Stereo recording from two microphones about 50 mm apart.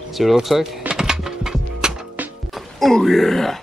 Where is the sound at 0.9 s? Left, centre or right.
Centre.